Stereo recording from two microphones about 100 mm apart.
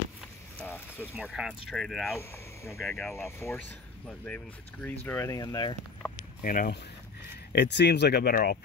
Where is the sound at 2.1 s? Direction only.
25° left (ahead or behind).